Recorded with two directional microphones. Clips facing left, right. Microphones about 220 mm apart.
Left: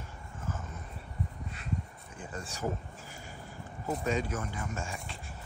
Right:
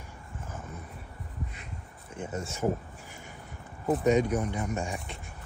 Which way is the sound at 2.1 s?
25° right (ahead or behind).